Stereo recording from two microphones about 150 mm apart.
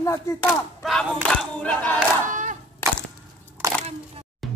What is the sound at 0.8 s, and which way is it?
Battle cry, 5° left (ahead or behind).